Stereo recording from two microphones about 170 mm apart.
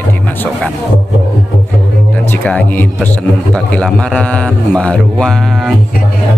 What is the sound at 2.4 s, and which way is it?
Speech, 10° left (ahead or behind).